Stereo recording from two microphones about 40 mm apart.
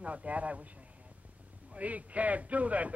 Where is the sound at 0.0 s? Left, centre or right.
Right.